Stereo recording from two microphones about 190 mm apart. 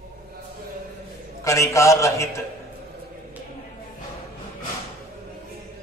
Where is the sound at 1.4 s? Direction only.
15° left (ahead or behind).